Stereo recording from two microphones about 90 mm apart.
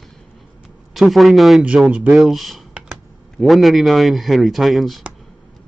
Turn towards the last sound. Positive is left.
turn(degrees=0)  # may be behind; listen again after turning